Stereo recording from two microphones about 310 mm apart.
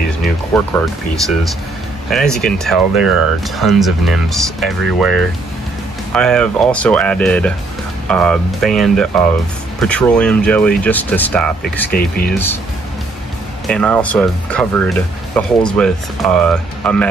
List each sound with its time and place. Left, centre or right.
0.7 s speech: centre
11.9 s speech: left
13.7 s speech: centre